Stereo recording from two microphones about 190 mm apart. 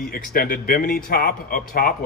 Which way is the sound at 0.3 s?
50° left (ahead or behind).